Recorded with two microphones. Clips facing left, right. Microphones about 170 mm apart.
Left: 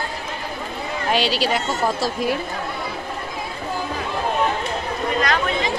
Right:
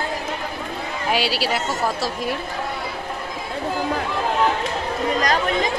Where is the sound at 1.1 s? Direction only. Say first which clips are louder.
Left 2 dB; 5° right (ahead or behind).